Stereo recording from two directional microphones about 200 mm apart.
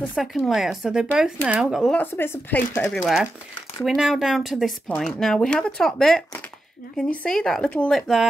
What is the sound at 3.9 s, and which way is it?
Speech, 5° right (ahead or behind).